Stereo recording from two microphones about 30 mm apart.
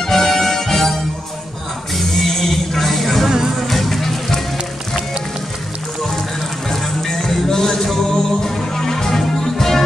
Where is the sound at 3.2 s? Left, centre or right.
Centre.